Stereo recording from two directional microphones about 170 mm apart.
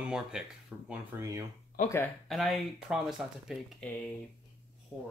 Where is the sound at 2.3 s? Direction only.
Centre (ahead or behind).